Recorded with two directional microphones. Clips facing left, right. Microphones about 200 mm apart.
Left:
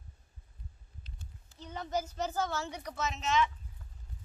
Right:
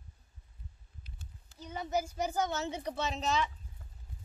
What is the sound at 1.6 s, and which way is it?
A child's voice, 10° right (ahead or behind).